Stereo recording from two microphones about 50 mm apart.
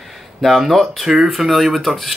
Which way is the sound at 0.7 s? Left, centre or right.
Centre.